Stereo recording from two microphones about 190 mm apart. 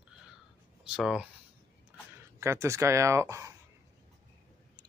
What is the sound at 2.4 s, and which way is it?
Speech, 15° right (ahead or behind).